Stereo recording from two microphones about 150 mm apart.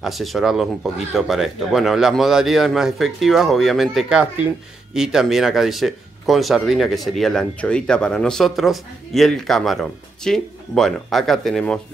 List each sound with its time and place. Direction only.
0.0 s speech: centre (ahead or behind)